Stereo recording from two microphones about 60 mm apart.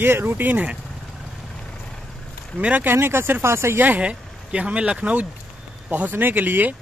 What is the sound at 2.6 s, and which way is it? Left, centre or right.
Speech, right.